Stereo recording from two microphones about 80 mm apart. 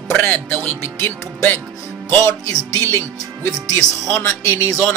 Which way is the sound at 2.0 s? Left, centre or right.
Left.